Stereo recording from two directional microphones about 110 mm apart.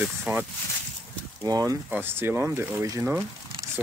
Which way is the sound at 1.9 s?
20° right (ahead or behind).